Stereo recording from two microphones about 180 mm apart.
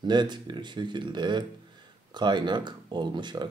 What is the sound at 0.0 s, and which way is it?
Speech, 25° right (ahead or behind).